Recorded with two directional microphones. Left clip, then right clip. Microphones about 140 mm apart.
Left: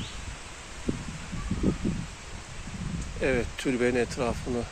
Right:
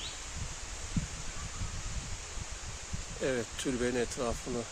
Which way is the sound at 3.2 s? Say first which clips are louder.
Left 6 dB; 5° left (ahead or behind).